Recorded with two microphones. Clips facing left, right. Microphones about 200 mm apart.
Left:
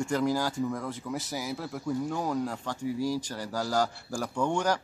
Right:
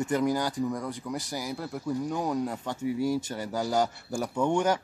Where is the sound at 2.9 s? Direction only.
60° right (ahead or behind).